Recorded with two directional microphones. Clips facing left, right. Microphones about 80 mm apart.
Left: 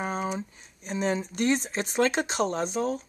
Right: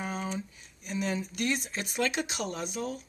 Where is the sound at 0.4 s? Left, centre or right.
Left.